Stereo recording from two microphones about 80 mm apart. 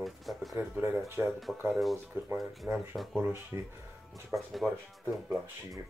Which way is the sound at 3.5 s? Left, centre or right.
Right.